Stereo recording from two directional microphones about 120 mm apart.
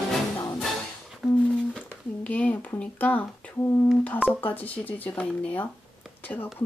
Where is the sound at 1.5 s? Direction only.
10° left (ahead or behind).